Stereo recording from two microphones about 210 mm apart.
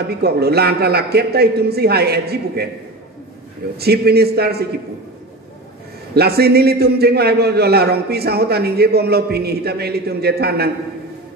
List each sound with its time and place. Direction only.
0.2 s a man's voice: 50° right (ahead or behind)
3.7 s a man's voice: 50° right (ahead or behind)
6.1 s a man's voice: 50° right (ahead or behind)